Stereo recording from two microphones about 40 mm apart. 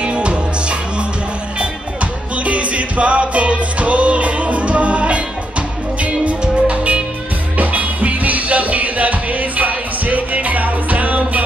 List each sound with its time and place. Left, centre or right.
0.0 s music: right
2.3 s music: right
6.4 s music: right